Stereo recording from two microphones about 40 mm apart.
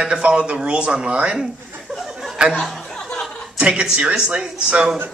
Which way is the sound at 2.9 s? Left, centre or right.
Centre.